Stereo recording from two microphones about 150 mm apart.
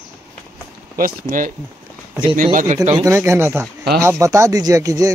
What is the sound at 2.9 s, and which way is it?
Speech, 20° right (ahead or behind).